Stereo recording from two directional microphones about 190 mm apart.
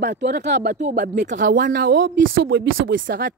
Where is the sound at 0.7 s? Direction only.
40° right (ahead or behind).